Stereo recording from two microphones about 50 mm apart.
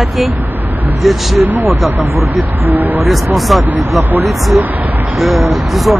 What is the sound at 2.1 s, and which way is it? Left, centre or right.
Speech, right.